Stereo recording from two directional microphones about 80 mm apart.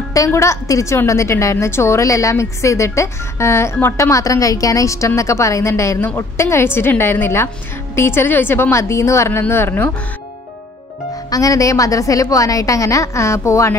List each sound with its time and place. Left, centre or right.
0.3 s a woman's voice: left
11.2 s a woman's voice: left